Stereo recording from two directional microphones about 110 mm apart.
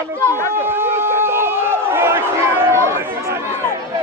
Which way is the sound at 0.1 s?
20° right (ahead or behind).